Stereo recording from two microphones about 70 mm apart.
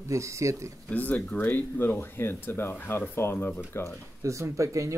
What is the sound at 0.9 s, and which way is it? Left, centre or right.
Speech, left.